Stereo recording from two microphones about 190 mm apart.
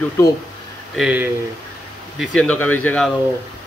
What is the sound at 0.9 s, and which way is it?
Speech, 5° right (ahead or behind).